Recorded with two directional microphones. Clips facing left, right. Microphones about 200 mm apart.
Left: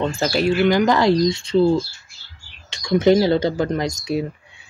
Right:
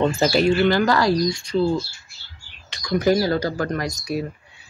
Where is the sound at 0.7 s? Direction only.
20° left (ahead or behind).